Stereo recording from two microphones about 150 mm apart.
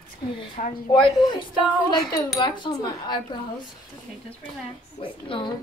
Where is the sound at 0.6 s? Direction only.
60° left (ahead or behind).